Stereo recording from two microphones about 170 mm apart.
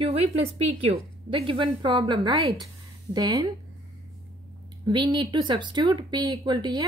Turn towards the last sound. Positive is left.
turn(degrees=-25)  # may be behind; listen again after turning